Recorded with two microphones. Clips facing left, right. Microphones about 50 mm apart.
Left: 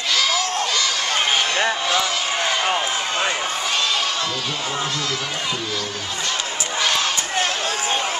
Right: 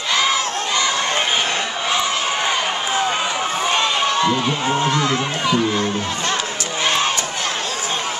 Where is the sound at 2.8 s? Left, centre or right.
Centre.